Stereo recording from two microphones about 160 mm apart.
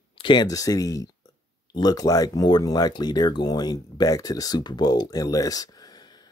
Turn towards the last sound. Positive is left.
turn(degrees=25)  # may be behind; listen again after turning